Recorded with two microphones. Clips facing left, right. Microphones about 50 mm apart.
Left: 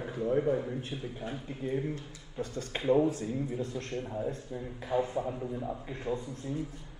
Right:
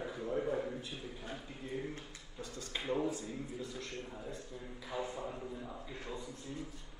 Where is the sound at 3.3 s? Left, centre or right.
Left.